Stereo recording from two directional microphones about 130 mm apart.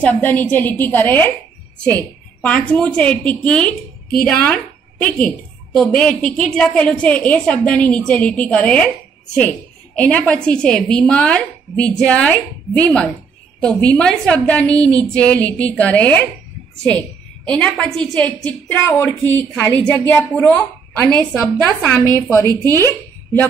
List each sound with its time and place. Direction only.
0.0 s a woman's voice: 10° left (ahead or behind)
17.6 s a woman's voice: 10° left (ahead or behind)
22.1 s a woman's voice: 20° left (ahead or behind)